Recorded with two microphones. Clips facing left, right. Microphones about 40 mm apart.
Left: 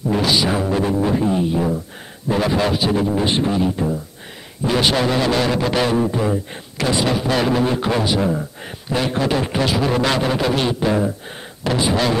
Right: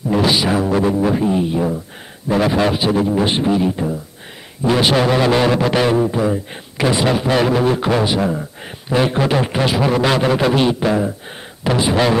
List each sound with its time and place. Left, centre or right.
0.1 s a man's voice: centre